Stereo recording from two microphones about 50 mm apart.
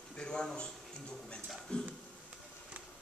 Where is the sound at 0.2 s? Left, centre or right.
Centre.